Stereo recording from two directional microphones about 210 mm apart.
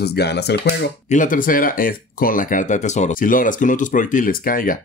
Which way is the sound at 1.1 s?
40° left (ahead or behind).